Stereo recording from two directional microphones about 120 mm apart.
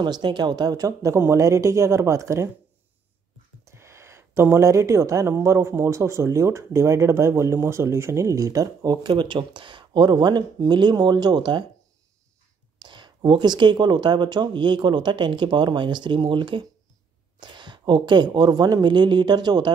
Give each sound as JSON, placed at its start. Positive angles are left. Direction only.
{"t": 0.0, "sound": "speech", "side_deg": -40}
{"t": 3.6, "sound": "speech", "side_deg": -25}
{"t": 12.8, "sound": "speech", "side_deg": -40}